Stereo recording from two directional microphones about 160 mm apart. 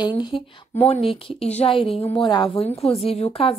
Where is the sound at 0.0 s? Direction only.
30° left (ahead or behind).